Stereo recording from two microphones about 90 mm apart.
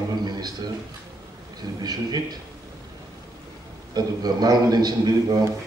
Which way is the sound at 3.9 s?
50° right (ahead or behind).